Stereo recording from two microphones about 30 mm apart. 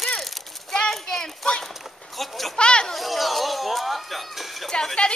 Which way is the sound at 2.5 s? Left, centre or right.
Left.